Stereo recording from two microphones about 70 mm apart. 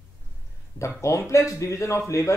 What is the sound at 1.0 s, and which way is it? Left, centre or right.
Speech, left.